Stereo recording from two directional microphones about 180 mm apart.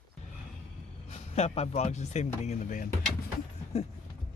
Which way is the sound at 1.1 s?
35° left (ahead or behind).